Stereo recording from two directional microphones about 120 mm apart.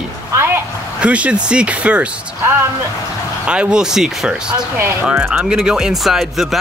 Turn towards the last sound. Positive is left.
turn(degrees=0)  # may be behind; listen again after turning